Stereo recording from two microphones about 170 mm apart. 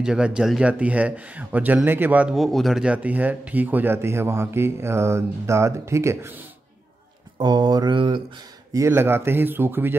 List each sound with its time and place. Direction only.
0.0 s a man's voice: 5° right (ahead or behind)
7.3 s a man's voice: 25° right (ahead or behind)